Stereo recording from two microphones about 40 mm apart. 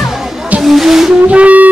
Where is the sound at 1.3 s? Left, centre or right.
Right.